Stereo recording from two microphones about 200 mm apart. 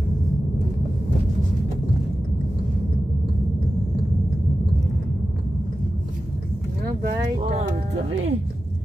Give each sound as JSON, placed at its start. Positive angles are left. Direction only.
{"t": 7.3, "sound": "speech", "side_deg": -30}